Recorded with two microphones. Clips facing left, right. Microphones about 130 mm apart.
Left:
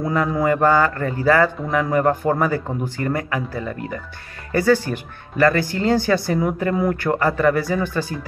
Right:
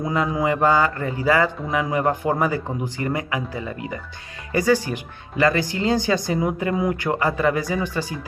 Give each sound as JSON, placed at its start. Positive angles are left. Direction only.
{"t": 0.0, "sound": "speech", "side_deg": -15}